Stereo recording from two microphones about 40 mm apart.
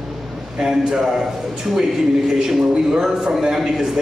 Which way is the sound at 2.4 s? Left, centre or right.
Centre.